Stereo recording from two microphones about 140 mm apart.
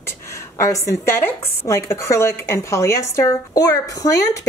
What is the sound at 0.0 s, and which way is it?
Speech, 20° left (ahead or behind).